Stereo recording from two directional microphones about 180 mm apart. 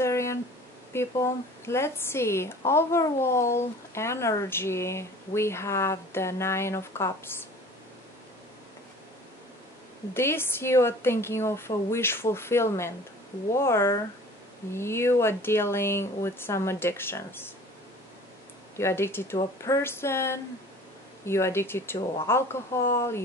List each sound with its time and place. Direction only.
0.0 s a sound: 15° left (ahead or behind)
0.9 s a woman's voice: 15° left (ahead or behind)
10.1 s a woman's voice: 15° left (ahead or behind)
18.8 s a woman's voice: 15° left (ahead or behind)